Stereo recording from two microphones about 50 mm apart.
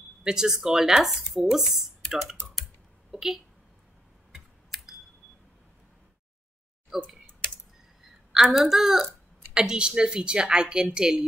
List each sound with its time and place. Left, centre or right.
0.2 s speech: centre
3.1 s a sound: centre
6.9 s speech: centre
8.3 s speech: centre